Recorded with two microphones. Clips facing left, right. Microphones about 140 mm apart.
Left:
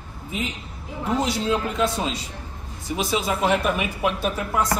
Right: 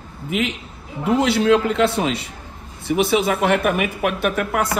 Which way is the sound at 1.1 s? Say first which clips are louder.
Right 7 dB; 65° right (ahead or behind).